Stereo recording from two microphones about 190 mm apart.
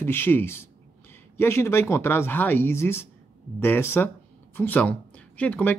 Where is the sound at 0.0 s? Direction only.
10° left (ahead or behind).